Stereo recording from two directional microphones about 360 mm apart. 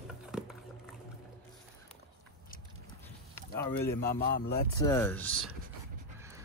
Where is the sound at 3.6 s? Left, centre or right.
Centre.